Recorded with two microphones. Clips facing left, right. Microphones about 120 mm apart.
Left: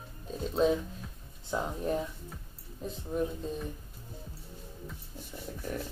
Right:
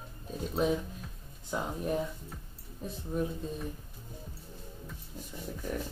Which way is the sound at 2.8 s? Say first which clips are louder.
Left 1 dB; 5° right (ahead or behind).